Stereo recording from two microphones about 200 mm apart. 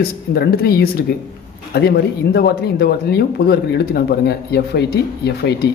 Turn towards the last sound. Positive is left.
turn(degrees=55)  # may be behind; listen again after turning